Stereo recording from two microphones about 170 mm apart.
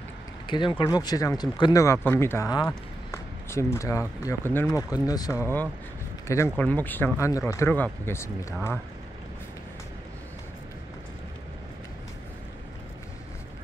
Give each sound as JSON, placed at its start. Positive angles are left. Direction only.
{"t": 0.5, "sound": "speech", "side_deg": 30}
{"t": 2.6, "sound": "a sound", "side_deg": 15}
{"t": 4.2, "sound": "speech", "side_deg": 15}